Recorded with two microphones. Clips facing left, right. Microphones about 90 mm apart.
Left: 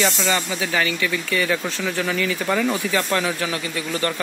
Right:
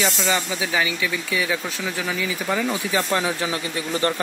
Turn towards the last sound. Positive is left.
turn(degrees=-25)  # may be behind; listen again after turning